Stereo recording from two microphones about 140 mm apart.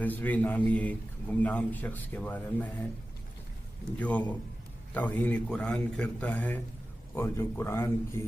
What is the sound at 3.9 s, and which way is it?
A man's voice, 10° left (ahead or behind).